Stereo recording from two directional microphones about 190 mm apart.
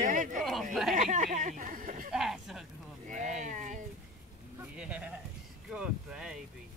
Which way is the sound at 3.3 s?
40° right (ahead or behind).